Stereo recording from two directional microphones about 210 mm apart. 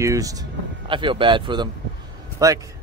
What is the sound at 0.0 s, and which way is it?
A man's voice, 15° right (ahead or behind).